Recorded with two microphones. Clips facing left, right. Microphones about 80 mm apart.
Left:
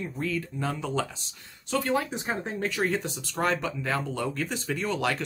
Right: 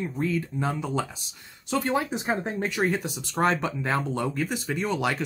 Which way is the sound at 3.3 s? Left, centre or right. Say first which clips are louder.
Right 3 dB; right.